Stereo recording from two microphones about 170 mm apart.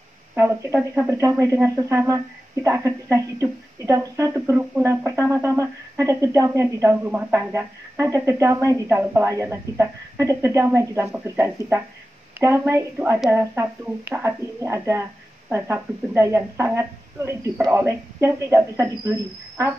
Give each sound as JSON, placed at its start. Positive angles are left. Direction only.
{"t": 0.4, "sound": "a woman's voice", "side_deg": -15}